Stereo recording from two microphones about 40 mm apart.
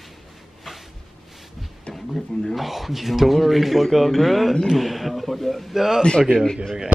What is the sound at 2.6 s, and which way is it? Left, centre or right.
Speech, centre.